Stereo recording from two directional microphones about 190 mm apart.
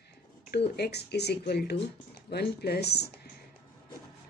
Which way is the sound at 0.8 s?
60° left (ahead or behind).